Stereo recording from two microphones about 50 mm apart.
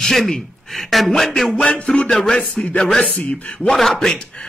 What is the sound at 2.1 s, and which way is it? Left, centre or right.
Speech, centre.